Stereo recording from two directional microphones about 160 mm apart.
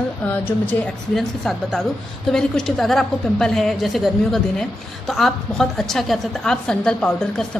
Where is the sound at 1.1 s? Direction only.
Centre (ahead or behind).